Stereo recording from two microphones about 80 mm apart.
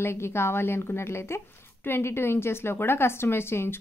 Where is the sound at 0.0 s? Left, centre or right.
Left.